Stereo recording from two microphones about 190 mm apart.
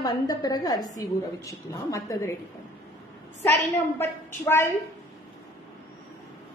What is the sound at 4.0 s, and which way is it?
Speech, 15° left (ahead or behind).